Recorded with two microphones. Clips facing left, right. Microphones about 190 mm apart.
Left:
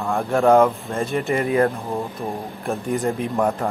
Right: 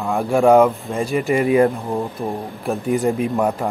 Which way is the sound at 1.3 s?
15° right (ahead or behind).